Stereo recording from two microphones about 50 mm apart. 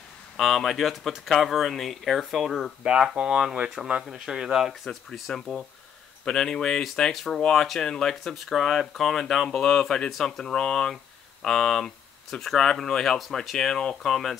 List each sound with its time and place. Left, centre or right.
0.4 s speech: centre
2.8 s speech: centre
4.8 s speech: centre
8.2 s speech: centre